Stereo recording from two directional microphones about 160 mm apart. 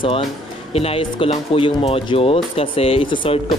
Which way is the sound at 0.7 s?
35° left (ahead or behind).